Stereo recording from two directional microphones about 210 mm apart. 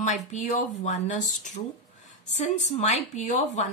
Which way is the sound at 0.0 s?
35° left (ahead or behind).